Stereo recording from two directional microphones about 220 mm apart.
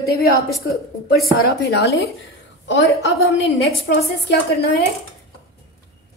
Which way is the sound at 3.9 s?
50° left (ahead or behind).